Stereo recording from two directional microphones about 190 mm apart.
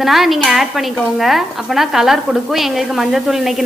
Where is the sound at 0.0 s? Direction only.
Centre (ahead or behind).